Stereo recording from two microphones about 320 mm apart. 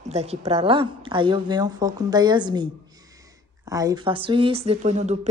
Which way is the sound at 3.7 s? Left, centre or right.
Centre.